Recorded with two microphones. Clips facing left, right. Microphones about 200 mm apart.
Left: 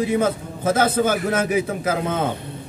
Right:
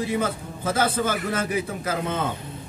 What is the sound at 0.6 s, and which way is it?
Speech, 45° left (ahead or behind).